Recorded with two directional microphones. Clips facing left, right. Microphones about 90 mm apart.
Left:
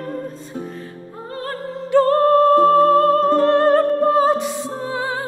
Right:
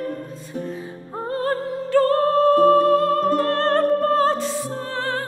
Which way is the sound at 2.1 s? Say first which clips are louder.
Left 6 dB; 35° left (ahead or behind).